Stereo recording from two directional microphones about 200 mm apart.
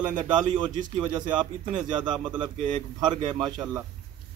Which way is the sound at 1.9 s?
20° right (ahead or behind).